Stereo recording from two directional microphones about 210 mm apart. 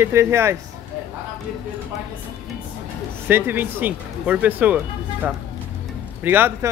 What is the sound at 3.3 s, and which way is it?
Speech, 10° right (ahead or behind).